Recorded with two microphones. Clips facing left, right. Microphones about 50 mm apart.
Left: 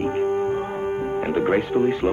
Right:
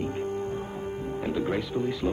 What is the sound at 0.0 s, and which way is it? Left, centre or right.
Speech, left.